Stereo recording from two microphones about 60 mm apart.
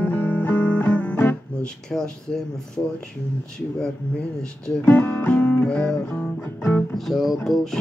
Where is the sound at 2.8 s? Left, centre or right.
Left.